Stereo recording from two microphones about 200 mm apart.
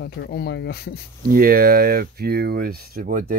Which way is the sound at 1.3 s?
45° right (ahead or behind).